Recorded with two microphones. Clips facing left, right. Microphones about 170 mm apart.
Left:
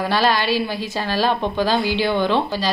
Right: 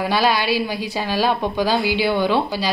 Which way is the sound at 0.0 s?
10° right (ahead or behind).